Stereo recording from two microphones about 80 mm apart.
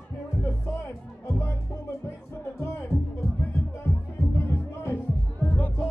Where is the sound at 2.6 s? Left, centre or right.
Left.